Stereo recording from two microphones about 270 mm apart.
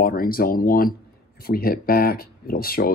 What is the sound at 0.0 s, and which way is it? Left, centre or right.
Speech, left.